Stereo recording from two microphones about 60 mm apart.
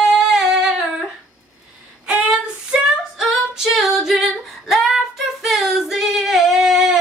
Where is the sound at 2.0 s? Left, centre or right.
Centre.